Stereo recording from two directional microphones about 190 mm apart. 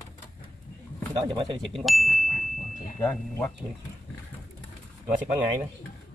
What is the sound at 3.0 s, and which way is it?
Speech, 10° left (ahead or behind).